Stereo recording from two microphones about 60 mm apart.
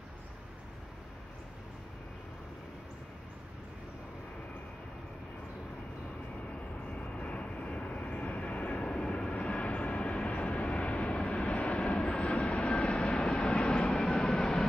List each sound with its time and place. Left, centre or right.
7.0 s vehicle: left; by 14.6 s centre